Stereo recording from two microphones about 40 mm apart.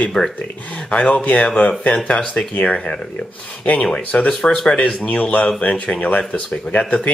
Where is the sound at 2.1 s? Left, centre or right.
Left.